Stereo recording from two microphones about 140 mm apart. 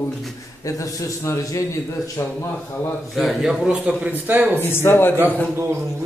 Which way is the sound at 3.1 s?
Centre (ahead or behind).